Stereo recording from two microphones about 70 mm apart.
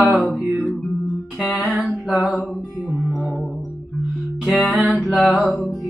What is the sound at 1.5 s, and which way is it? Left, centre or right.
Music, centre.